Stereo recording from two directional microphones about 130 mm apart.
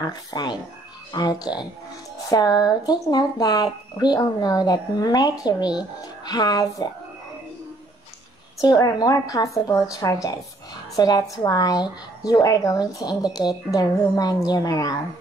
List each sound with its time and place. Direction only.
0.0 s speech: 30° left (ahead or behind)
8.5 s speech: 25° left (ahead or behind)